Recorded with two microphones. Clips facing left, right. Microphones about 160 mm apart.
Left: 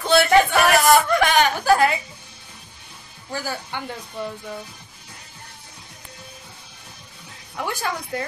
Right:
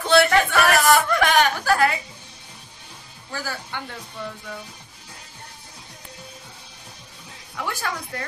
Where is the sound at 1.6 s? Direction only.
20° left (ahead or behind).